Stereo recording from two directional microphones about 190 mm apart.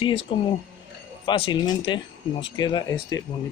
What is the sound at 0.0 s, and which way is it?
Speech, 25° left (ahead or behind).